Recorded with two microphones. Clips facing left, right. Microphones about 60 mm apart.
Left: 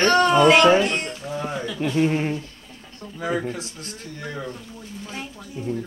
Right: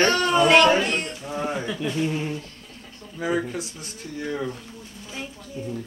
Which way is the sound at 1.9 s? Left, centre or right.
Left.